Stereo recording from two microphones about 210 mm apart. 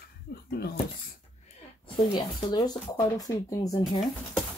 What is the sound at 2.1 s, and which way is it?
Speech, 20° left (ahead or behind).